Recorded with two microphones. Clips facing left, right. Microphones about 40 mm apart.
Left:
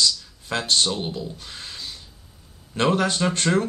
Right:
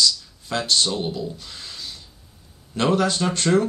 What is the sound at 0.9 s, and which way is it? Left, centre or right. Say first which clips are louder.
Speech: right 2 dB; centre.